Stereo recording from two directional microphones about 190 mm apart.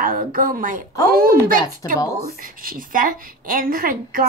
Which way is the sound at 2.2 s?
50° right (ahead or behind).